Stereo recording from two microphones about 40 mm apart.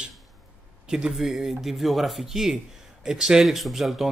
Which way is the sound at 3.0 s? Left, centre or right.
Centre.